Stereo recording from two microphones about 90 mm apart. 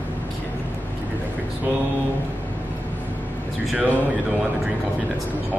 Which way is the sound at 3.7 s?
15° right (ahead or behind).